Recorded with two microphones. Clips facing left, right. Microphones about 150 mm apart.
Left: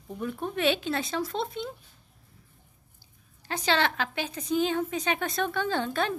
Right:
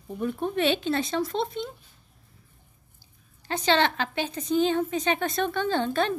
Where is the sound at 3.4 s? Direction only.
5° left (ahead or behind).